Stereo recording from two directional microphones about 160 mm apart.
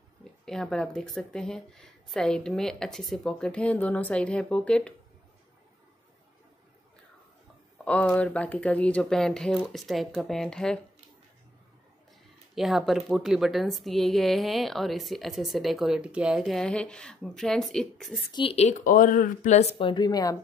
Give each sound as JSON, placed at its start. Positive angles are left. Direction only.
{"t": 0.2, "sound": "a woman's voice", "side_deg": 5}
{"t": 7.8, "sound": "a woman's voice", "side_deg": 10}
{"t": 12.5, "sound": "a woman's voice", "side_deg": 0}
{"t": 18.3, "sound": "speech", "side_deg": 35}
{"t": 18.9, "sound": "speech", "side_deg": 60}
{"t": 19.8, "sound": "speech", "side_deg": 25}